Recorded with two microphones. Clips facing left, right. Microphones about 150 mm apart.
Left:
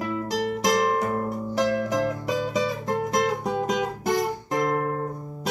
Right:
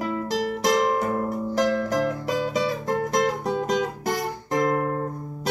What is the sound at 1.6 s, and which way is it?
Music, 15° left (ahead or behind).